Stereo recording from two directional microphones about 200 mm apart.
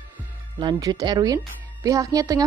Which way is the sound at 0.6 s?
20° right (ahead or behind).